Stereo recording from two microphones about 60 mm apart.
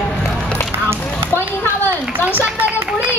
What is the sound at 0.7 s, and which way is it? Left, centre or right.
Run, right.